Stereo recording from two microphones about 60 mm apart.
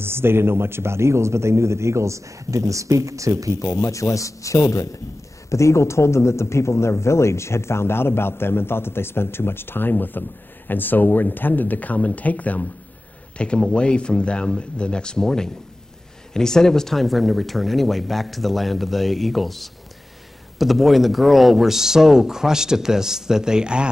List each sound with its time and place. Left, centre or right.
0.0 s a man's voice: right
3.6 s a man's voice: left; by 23.9 s centre